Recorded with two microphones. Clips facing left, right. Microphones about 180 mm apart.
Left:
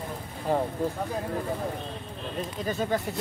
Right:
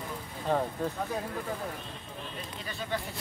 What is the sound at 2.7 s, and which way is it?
Speech, 45° left (ahead or behind).